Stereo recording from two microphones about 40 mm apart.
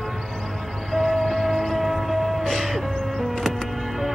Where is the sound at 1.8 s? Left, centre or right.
Centre.